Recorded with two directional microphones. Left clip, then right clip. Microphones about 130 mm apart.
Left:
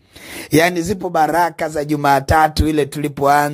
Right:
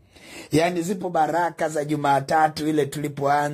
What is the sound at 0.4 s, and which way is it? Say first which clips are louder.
Music: left 7 dB; 35° left (ahead or behind).